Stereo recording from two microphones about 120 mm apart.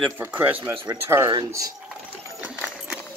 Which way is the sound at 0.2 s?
15° right (ahead or behind).